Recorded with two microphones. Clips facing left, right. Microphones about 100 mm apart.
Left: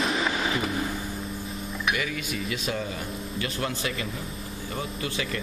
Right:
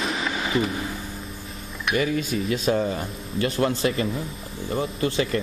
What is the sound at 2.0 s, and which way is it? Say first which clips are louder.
Speech: right 7 dB; 35° right (ahead or behind).